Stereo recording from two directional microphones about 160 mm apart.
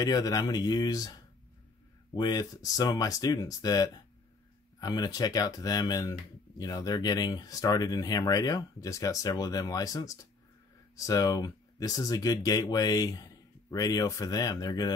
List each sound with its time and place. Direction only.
0.0 s speech: 25° left (ahead or behind)
2.1 s speech: 25° left (ahead or behind)